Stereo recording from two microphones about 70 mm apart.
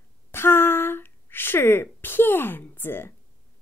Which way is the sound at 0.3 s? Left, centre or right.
Left.